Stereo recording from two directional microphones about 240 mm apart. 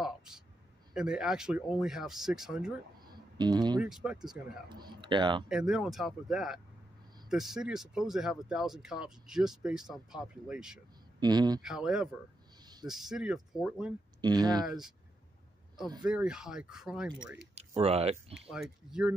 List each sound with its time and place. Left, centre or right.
0.0 s a sound: centre
0.9 s speech: centre
3.1 s a sound: centre
3.8 s speech: centre
4.6 s speech: centre
5.5 s speech: centre
11.1 s speech: centre
11.6 s speech: centre
14.2 s speech: centre
16.0 s speech: centre
17.6 s speech: right
18.5 s speech: centre